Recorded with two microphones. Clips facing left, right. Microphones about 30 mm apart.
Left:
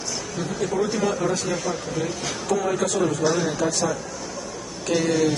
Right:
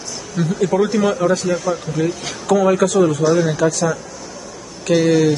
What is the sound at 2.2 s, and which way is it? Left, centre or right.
A woman's voice, right.